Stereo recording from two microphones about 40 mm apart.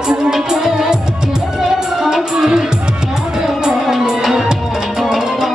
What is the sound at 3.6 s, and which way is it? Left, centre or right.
Music, centre.